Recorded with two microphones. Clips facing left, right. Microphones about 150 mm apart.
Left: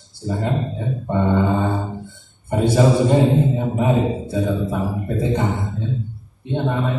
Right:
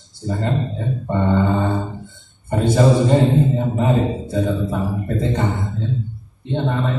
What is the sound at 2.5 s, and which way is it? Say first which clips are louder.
A man's voice: even; 10° left (ahead or behind).